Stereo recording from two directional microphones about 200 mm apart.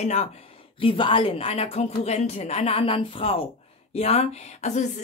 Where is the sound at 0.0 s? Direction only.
35° left (ahead or behind).